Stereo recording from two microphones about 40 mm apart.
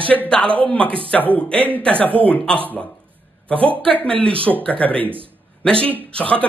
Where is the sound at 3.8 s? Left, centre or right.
Left.